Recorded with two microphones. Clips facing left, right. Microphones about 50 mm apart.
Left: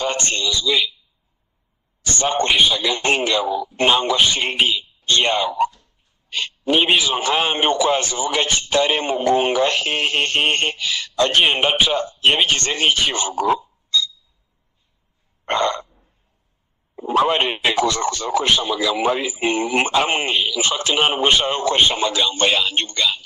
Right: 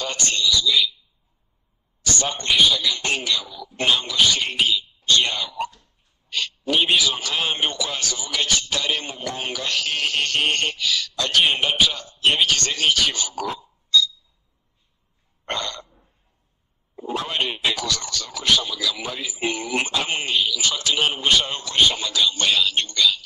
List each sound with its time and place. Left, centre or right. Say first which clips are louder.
0.0 s a man's voice: left 2 dB; left
2.0 s a man's voice: left 5 dB; left
15.4 s a sound: left 9 dB; left
17.2 s a man's voice: left 8 dB; left